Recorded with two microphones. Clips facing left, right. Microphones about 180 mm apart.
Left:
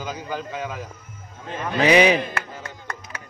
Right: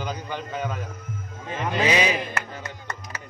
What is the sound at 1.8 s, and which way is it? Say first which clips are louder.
Speech: left 7 dB; 65° left (ahead or behind).